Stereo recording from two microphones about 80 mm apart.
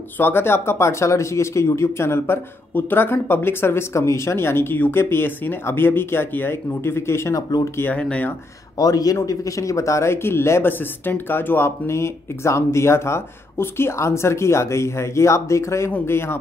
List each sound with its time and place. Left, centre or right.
0.2 s speech: left
7.3 s speech: left
7.9 s speech: centre
8.7 s speech: left